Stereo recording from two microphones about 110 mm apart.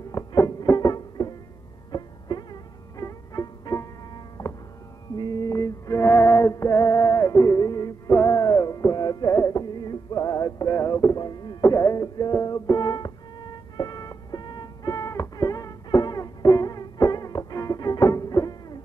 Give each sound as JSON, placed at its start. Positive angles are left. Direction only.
{"t": 0.1, "sound": "music", "side_deg": 30}
{"t": 5.1, "sound": "music", "side_deg": 40}